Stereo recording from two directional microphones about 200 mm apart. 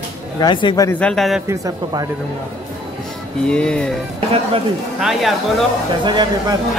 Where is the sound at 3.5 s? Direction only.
5° left (ahead or behind).